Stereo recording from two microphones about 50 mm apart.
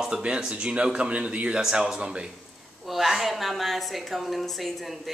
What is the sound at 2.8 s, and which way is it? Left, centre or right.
A woman's voice, centre.